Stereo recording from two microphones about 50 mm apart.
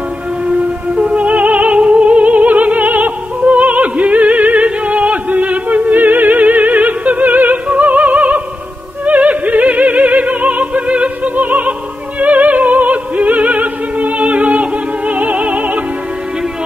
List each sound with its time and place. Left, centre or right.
0.5 s music: right
7.6 s opera: right